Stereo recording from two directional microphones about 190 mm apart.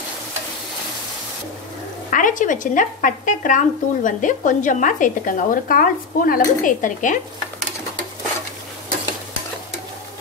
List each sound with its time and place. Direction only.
2.0 s speech: 45° left (ahead or behind)